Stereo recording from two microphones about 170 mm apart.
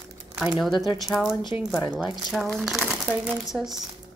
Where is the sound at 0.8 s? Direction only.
25° left (ahead or behind).